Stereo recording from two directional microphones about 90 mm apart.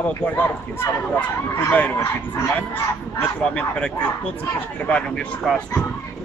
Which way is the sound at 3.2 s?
15° left (ahead or behind).